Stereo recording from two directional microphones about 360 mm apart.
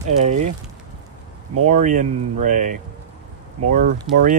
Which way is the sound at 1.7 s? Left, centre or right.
Centre.